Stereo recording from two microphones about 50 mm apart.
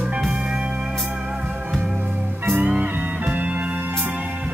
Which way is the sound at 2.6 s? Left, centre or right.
Right.